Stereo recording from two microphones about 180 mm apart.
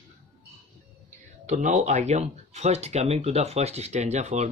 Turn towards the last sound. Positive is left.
turn(degrees=-40)  # may be behind; listen again after turning